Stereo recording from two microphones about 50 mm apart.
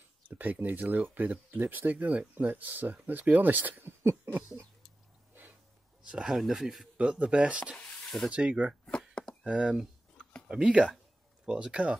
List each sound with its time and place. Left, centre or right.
0.4 s speech: right
3.8 s a sound: right
6.0 s speech: centre
7.0 s speech: right
9.4 s a sound: centre
10.5 s speech: centre